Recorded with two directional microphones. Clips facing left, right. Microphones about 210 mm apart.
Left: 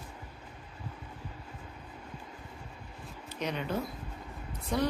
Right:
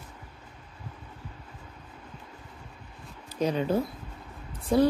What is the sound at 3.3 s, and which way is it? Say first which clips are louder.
Speech: right 8 dB; 35° right (ahead or behind).